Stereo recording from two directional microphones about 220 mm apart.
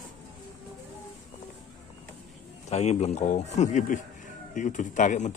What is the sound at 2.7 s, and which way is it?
Speech, 30° left (ahead or behind).